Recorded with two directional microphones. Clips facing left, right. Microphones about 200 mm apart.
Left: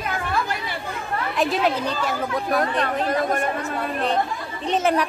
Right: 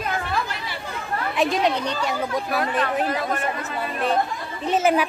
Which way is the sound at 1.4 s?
5° left (ahead or behind).